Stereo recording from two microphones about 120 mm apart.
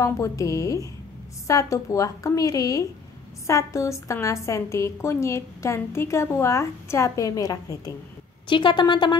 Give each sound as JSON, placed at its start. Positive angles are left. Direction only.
{"t": 0.0, "sound": "a woman's voice", "side_deg": 25}
{"t": 8.5, "sound": "a woman's voice", "side_deg": 40}